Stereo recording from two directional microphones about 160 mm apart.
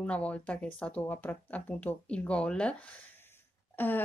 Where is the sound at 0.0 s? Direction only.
10° left (ahead or behind).